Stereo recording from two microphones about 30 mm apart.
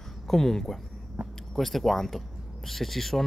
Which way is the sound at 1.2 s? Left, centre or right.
Right.